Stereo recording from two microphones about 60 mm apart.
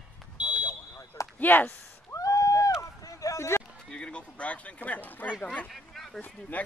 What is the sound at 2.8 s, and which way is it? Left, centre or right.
Run, left.